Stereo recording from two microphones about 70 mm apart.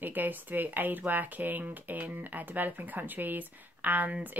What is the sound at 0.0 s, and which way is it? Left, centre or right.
Speech, right.